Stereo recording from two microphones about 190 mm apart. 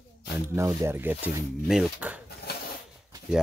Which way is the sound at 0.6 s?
15° right (ahead or behind).